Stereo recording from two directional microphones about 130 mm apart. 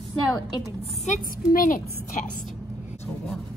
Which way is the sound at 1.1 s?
90° left.